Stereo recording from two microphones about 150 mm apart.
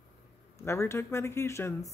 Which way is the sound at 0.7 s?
20° left (ahead or behind).